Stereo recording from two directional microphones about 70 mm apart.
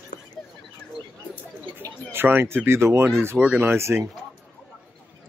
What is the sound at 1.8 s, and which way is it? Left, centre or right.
Speech, right.